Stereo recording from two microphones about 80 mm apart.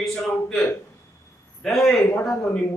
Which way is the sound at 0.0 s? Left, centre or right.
Centre.